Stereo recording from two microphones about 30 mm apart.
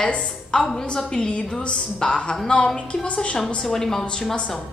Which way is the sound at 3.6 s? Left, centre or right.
Centre.